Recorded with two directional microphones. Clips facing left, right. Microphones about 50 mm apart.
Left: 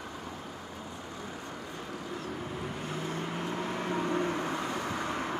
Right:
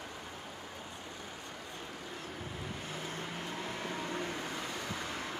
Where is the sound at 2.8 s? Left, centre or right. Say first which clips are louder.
Left 6 dB; left.